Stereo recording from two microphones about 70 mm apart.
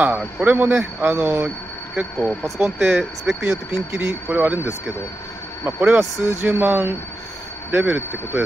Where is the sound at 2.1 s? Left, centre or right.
Centre.